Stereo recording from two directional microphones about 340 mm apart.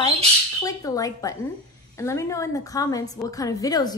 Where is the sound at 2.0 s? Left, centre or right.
Centre.